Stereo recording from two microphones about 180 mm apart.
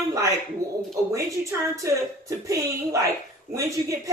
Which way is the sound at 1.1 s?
15° right (ahead or behind).